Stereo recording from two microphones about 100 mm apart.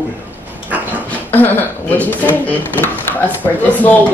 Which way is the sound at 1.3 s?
20° left (ahead or behind).